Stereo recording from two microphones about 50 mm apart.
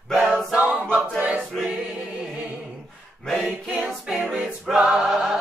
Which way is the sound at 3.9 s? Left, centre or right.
Centre.